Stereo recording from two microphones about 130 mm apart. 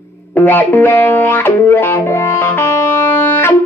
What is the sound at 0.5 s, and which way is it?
Music, 15° left (ahead or behind).